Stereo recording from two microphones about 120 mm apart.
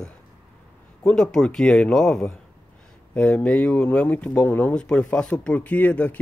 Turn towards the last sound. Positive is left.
turn(degrees=15)  # may be behind; listen again after turning